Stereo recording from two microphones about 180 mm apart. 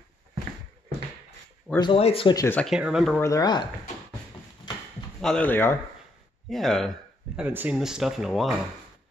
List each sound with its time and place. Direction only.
1.8 s speech: 30° left (ahead or behind)
2.3 s speech: 15° left (ahead or behind)
2.6 s speech: 5° right (ahead or behind)
3.2 s speech: 20° left (ahead or behind)
5.2 s speech: 5° left (ahead or behind)
7.3 s speech: 10° right (ahead or behind)